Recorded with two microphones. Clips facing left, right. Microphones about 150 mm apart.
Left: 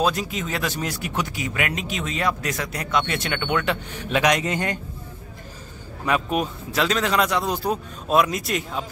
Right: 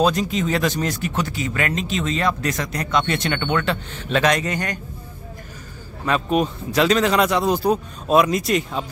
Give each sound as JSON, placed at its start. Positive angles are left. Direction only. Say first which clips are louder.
{"t": 0.0, "sound": "speech", "louder": "right 4 dB", "side_deg": 5}
{"t": 6.0, "sound": "speech", "louder": "right 3 dB", "side_deg": 5}